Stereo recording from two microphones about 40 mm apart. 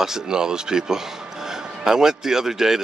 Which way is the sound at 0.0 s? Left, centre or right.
Centre.